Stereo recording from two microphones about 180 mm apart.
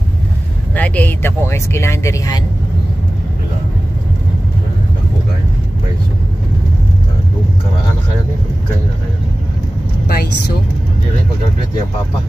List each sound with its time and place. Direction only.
0.7 s speech: 10° left (ahead or behind)
10.0 s speech: 55° left (ahead or behind)